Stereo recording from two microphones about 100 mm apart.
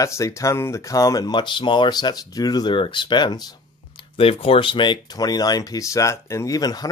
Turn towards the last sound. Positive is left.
turn(degrees=40)  # may be behind; listen again after turning